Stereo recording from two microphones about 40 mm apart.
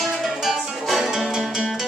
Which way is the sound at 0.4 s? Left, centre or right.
Centre.